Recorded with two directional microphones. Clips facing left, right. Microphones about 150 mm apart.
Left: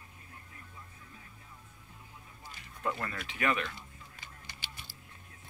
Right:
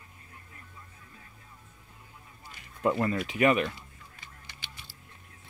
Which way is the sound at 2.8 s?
25° right (ahead or behind).